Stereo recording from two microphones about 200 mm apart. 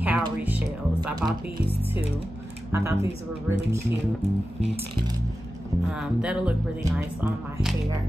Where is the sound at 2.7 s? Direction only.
15° right (ahead or behind).